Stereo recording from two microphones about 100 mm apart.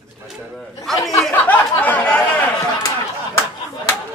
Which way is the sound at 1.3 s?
15° left (ahead or behind).